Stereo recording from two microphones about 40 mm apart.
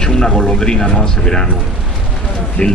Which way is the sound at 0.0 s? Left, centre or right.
Centre.